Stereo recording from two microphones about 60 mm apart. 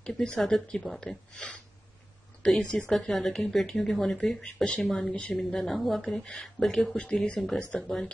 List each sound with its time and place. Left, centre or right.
0.0 s speech: centre
0.4 s speech: centre
2.4 s speech: centre
5.1 s a woman's voice: left
5.4 s speech: centre